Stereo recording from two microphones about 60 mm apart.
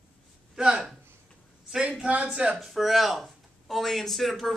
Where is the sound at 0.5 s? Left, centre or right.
Centre.